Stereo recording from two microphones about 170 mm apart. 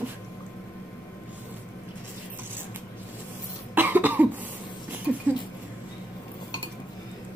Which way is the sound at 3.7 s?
10° right (ahead or behind).